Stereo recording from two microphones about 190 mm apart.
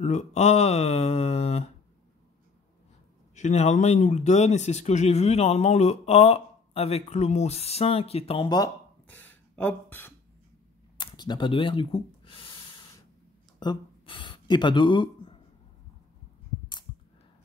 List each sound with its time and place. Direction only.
0.0 s speech: 40° left (ahead or behind)
3.3 s speech: 35° left (ahead or behind)
9.0 s throat clearing: 10° left (ahead or behind)
11.0 s speech: 25° left (ahead or behind)
13.6 s speech: 25° left (ahead or behind)